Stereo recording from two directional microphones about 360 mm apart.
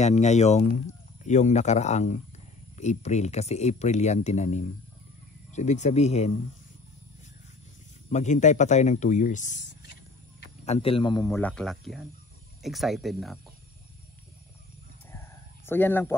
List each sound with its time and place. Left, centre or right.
0.0 s speech: centre
8.1 s speech: centre
15.1 s a sound: centre